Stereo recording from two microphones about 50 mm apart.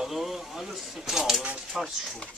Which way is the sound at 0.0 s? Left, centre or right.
Centre.